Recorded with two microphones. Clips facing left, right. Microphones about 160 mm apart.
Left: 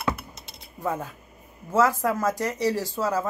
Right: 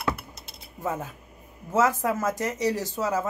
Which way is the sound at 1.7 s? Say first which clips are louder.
Left 1 dB; 20° right (ahead or behind).